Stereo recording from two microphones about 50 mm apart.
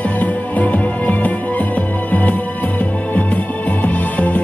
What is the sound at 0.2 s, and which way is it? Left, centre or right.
Music, left.